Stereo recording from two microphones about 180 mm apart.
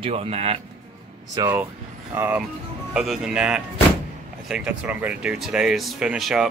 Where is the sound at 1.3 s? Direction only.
15° right (ahead or behind).